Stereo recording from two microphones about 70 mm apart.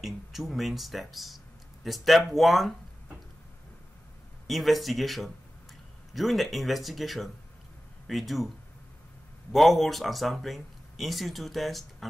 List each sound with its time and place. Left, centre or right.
0.0 s speech: centre
4.5 s speech: centre
9.5 s speech: centre